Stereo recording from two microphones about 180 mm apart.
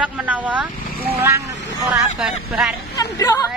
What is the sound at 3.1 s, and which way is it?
Speech, 20° left (ahead or behind).